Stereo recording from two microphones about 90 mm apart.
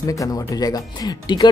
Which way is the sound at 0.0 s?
40° left (ahead or behind).